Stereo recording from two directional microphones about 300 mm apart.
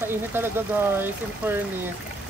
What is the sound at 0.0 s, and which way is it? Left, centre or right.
Speech, centre.